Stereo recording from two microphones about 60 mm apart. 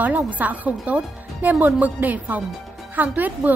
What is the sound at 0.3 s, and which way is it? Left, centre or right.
A woman's voice, right.